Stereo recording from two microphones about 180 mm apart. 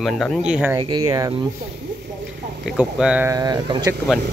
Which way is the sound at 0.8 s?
20° right (ahead or behind).